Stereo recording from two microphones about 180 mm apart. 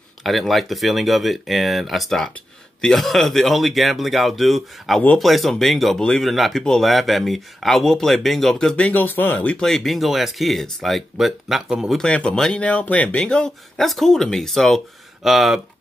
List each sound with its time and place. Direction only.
0.2 s speech: centre (ahead or behind)